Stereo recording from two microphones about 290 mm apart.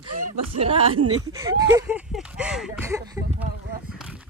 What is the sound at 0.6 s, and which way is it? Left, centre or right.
Speech, centre.